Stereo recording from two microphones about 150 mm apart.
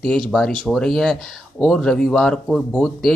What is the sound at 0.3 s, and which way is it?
Speech, 5° left (ahead or behind).